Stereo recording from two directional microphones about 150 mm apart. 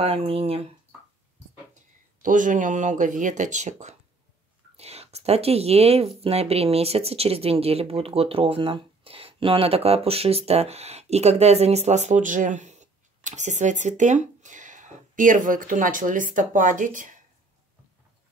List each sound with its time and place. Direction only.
0.0 s speech: 40° right (ahead or behind)
1.7 s speech: 60° right (ahead or behind)